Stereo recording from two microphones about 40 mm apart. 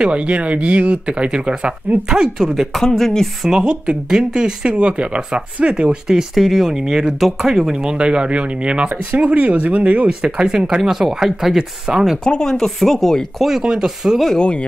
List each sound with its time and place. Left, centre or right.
0.0 s speech: right
2.0 s speech: centre
2.8 s speech: centre
3.4 s speech: centre
6.3 s speech: centre
6.7 s speech: centre
7.2 s speech: centre
8.0 s speech: right
10.0 s speech: centre
10.8 s speech: centre
12.3 s speech: centre
13.4 s speech: centre
14.4 s speech: left